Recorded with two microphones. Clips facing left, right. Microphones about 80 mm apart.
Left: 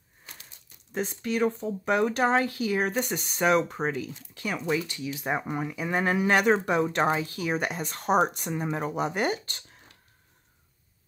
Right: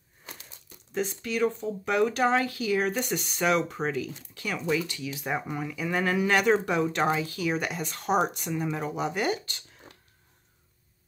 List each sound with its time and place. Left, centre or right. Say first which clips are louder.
0.9 s speech: left 1 dB; left